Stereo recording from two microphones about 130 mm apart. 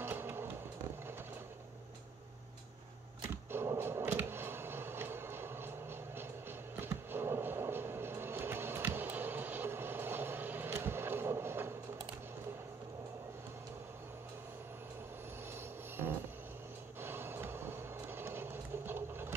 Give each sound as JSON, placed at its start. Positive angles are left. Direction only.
{"t": 0.0, "sound": "vehicle", "side_deg": -15}
{"t": 3.5, "sound": "a sound", "side_deg": -20}
{"t": 6.8, "sound": "vehicle", "side_deg": -15}
{"t": 17.0, "sound": "vehicle", "side_deg": -15}